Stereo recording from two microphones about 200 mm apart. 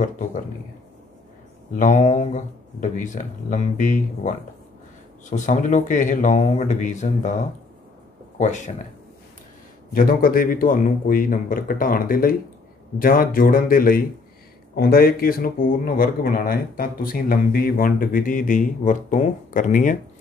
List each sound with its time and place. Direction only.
0.0 s speech: 40° left (ahead or behind)
1.8 s speech: 40° left (ahead or behind)
5.3 s speech: 40° left (ahead or behind)
8.4 s speech: 35° left (ahead or behind)
9.9 s speech: 45° left (ahead or behind)